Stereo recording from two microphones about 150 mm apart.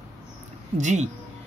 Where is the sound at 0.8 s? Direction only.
50° right (ahead or behind).